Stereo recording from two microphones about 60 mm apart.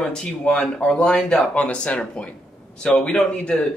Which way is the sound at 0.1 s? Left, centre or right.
Centre.